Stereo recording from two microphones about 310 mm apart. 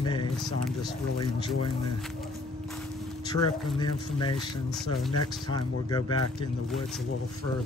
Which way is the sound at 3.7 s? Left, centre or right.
Centre.